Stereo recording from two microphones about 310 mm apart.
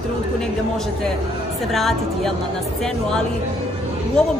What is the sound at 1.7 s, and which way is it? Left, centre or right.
Speech, centre.